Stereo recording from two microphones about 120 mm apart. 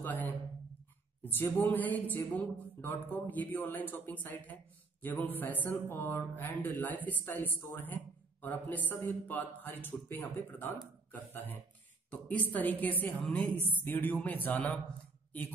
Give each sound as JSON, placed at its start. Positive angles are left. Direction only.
{"t": 0.0, "sound": "speech", "side_deg": 15}